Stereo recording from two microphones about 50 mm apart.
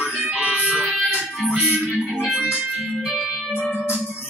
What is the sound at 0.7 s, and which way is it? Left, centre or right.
Music, right.